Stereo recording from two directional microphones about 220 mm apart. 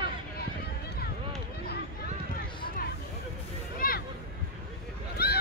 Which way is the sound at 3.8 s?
40° left (ahead or behind).